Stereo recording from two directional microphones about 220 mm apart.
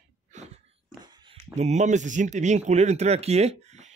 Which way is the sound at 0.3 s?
35° right (ahead or behind).